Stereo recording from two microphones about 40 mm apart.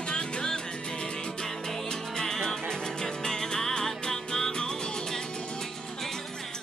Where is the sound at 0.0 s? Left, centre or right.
Left.